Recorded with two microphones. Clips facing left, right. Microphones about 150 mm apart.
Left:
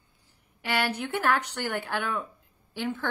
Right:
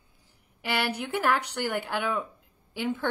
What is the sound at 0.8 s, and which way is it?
A woman's voice, 10° right (ahead or behind).